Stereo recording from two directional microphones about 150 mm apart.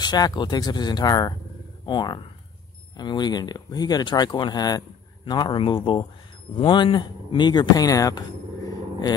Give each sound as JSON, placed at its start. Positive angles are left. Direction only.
{"t": 0.0, "sound": "speech", "side_deg": 25}